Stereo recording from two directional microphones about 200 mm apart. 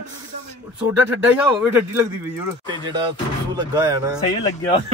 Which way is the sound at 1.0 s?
10° right (ahead or behind).